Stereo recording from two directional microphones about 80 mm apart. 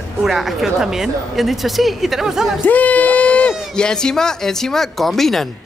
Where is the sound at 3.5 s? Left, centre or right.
Centre.